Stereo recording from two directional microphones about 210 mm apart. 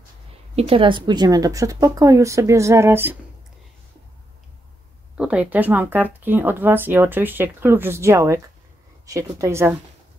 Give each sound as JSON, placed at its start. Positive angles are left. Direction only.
{"t": 0.6, "sound": "speech", "side_deg": -25}
{"t": 5.1, "sound": "speech", "side_deg": -5}